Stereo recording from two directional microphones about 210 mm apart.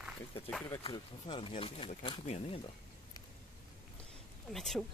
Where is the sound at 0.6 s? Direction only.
20° left (ahead or behind).